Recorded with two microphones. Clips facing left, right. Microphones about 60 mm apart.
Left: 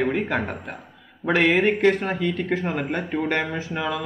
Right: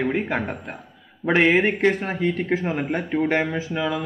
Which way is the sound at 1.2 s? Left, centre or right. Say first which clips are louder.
Right 1 dB; right.